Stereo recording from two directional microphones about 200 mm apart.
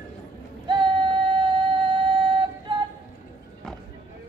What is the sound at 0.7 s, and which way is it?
Music, 25° right (ahead or behind).